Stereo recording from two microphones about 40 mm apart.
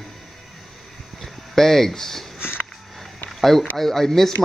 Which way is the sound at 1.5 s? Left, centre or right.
Centre.